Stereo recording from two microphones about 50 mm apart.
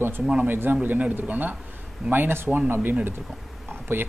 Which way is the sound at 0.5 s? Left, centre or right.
Right.